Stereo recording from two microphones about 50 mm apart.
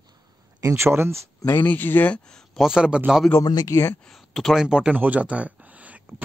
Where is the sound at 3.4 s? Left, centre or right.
Left.